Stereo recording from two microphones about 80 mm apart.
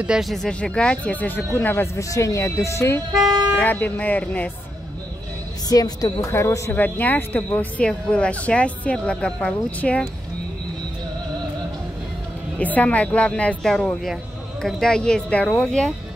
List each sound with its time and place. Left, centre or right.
0.2 s speech: centre; by 1.9 s left
2.0 s speech: left
3.5 s speech: left
5.7 s a woman's voice: left
6.3 s speech: left
6.7 s speech: left
12.5 s speech: centre